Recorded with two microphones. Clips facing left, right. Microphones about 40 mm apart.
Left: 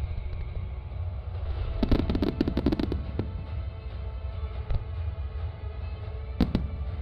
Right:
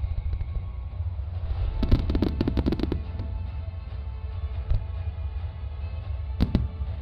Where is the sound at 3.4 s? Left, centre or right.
Centre.